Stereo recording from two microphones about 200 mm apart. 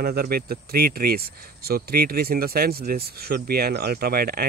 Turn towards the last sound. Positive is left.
turn(degrees=-50)  # may be behind; listen again after turning